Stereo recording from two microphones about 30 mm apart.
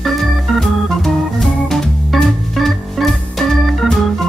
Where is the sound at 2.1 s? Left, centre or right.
Centre.